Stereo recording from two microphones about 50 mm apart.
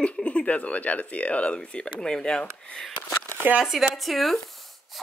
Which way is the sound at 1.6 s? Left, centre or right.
Centre.